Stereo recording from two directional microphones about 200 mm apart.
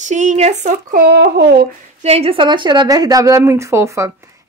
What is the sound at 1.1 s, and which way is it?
Speech, 55° right (ahead or behind).